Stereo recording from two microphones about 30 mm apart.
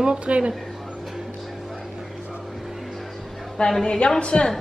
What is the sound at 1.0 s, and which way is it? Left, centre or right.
Music, centre.